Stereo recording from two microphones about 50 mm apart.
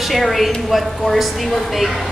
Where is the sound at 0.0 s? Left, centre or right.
Centre.